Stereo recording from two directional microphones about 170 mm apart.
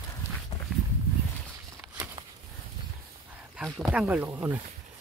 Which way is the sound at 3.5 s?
5° right (ahead or behind).